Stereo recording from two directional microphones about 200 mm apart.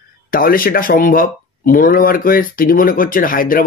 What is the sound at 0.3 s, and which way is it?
Speech, 45° left (ahead or behind).